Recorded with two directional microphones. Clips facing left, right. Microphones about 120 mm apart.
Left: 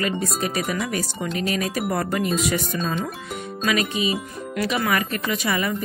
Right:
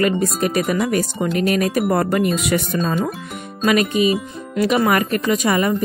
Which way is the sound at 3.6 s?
45° right (ahead or behind).